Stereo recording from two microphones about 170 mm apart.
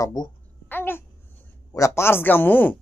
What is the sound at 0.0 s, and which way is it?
Speech, 25° left (ahead or behind).